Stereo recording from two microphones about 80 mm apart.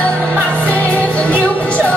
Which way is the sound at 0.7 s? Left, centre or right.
Centre.